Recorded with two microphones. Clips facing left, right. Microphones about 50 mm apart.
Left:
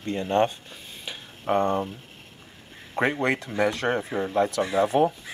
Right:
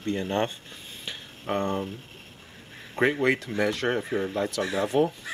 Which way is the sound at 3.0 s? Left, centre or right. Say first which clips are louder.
Right 1 dB; centre.